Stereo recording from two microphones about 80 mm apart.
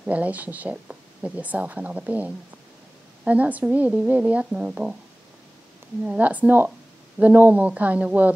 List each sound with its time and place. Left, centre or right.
0.0 s speech: centre
6.0 s speech: centre